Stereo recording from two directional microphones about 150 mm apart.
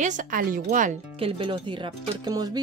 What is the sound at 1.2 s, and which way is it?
Speech, 35° right (ahead or behind).